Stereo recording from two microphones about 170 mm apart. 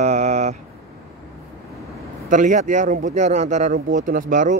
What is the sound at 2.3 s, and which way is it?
Speech, 50° right (ahead or behind).